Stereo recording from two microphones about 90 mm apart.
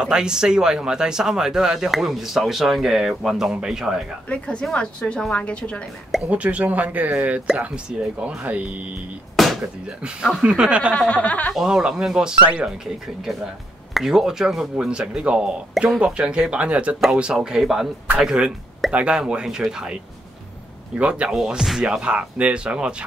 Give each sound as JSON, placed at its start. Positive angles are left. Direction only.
{"t": 0.0, "sound": "speech", "side_deg": -10}
{"t": 4.3, "sound": "a woman's voice", "side_deg": 10}
{"t": 6.2, "sound": "speech", "side_deg": -15}
{"t": 9.4, "sound": "a sound", "side_deg": 0}
{"t": 10.0, "sound": "speech", "side_deg": -10}
{"t": 11.0, "sound": "a woman's voice", "side_deg": 15}
{"t": 11.5, "sound": "speech", "side_deg": -5}
{"t": 13.9, "sound": "speech", "side_deg": -5}
{"t": 21.0, "sound": "speech", "side_deg": -15}